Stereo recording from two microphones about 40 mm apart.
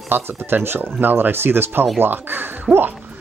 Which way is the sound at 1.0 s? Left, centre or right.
Right.